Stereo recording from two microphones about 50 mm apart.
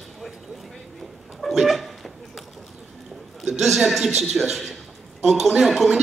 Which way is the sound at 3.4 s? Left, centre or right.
Centre.